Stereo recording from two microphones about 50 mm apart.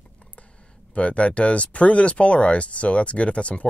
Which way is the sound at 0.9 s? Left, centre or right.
Left.